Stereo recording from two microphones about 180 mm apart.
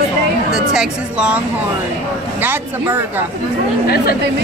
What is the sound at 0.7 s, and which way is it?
Speech, 5° right (ahead or behind).